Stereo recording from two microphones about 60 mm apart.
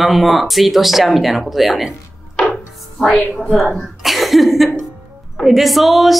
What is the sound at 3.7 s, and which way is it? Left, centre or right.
Speech, centre.